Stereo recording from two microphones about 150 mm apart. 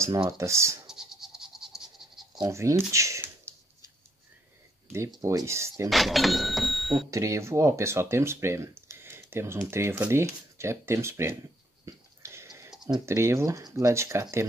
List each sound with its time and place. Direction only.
0.0 s speech: 20° right (ahead or behind)
0.8 s a sound: 5° right (ahead or behind)
2.5 s a sound: 20° right (ahead or behind)
4.9 s speech: 20° right (ahead or behind)
5.9 s speech: centre (ahead or behind)
7.1 s speech: 20° right (ahead or behind)
11.8 s wheeze: 20° right (ahead or behind)
12.8 s speech: 20° right (ahead or behind)